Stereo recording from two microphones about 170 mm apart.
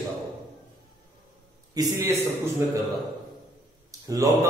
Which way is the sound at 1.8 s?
15° right (ahead or behind).